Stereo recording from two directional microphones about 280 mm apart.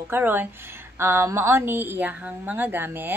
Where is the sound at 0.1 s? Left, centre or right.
Centre.